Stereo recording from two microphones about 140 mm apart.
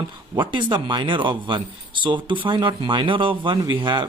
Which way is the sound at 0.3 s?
35° right (ahead or behind).